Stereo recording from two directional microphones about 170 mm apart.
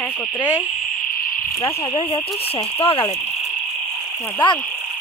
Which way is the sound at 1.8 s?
30° left (ahead or behind).